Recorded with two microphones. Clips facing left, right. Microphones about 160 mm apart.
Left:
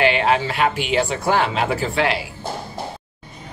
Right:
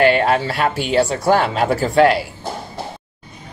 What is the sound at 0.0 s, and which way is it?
Speech, 45° right (ahead or behind).